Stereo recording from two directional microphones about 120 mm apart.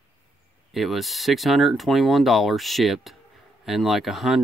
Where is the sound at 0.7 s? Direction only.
Centre (ahead or behind).